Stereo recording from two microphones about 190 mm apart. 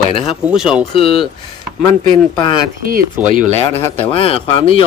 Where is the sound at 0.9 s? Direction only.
30° left (ahead or behind).